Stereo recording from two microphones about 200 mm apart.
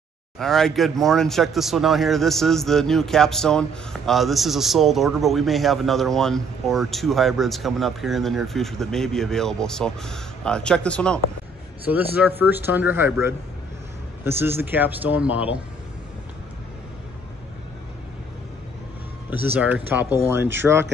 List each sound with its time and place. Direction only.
0.4 s speech: centre (ahead or behind)
11.8 s speech: 10° right (ahead or behind)
19.3 s speech: 10° right (ahead or behind)